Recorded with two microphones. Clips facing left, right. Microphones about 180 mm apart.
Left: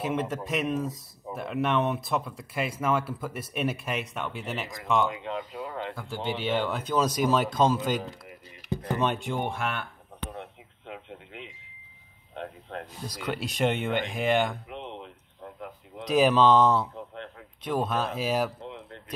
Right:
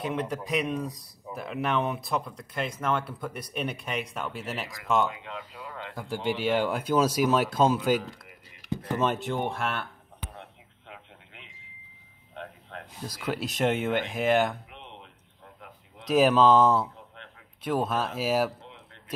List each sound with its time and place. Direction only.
0.0 s speech: centre (ahead or behind)
5.2 s speech: 25° left (ahead or behind)
5.9 s speech: 10° right (ahead or behind)
13.0 s speech: 5° right (ahead or behind)
16.1 s speech: centre (ahead or behind)